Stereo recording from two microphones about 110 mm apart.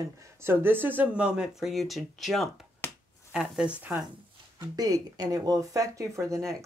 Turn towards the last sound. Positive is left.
turn(degrees=-25)  # may be behind; listen again after turning